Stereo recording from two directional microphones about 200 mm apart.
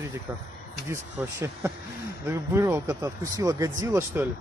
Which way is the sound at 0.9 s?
15° right (ahead or behind).